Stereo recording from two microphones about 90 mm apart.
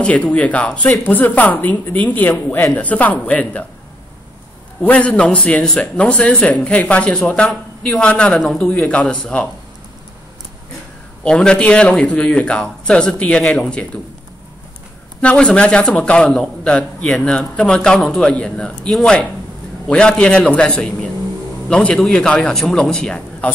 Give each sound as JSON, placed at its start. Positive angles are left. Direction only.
{"t": 0.0, "sound": "a man's voice", "side_deg": 15}
{"t": 4.8, "sound": "a man's voice", "side_deg": 15}
{"t": 8.6, "sound": "a man's voice", "side_deg": 15}
{"t": 11.2, "sound": "a man's voice", "side_deg": 10}
{"t": 15.2, "sound": "a man's voice", "side_deg": 10}